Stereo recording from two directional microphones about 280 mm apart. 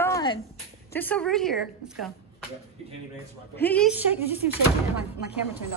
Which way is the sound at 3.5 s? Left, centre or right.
Centre.